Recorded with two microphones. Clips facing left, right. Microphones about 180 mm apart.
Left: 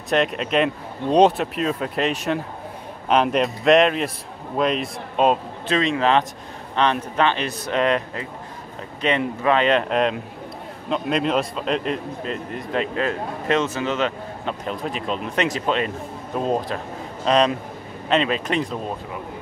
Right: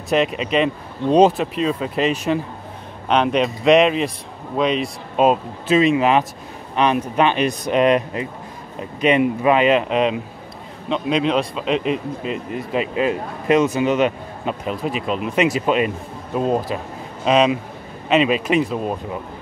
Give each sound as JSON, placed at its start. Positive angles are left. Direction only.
{"t": 0.1, "sound": "a man's voice", "side_deg": 0}